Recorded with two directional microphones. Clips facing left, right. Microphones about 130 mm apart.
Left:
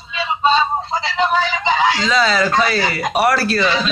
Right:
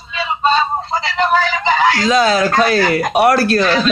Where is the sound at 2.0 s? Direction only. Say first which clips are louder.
Right 3 dB; 50° right (ahead or behind).